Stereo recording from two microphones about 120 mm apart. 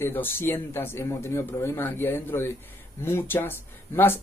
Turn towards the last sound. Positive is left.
turn(degrees=20)  # may be behind; listen again after turning